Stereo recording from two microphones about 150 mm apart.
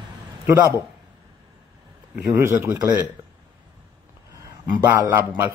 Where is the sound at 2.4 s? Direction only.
15° right (ahead or behind).